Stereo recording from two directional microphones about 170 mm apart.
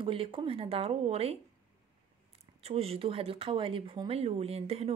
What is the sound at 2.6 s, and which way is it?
Speech, 35° right (ahead or behind).